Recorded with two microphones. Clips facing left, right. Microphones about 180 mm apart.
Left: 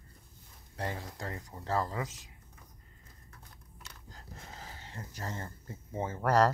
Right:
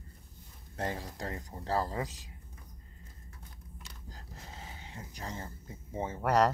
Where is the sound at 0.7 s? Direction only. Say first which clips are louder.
Right 2 dB; 40° right (ahead or behind).